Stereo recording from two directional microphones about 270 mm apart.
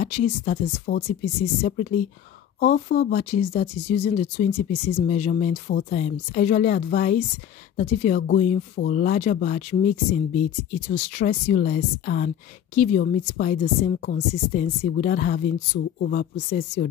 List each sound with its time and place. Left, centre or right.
0.0 s speech: left